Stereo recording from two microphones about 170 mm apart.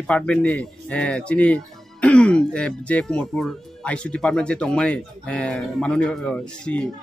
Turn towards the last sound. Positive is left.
turn(degrees=5)  # may be behind; listen again after turning